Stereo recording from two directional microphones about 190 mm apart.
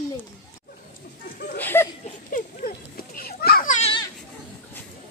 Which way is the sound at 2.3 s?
45° left (ahead or behind).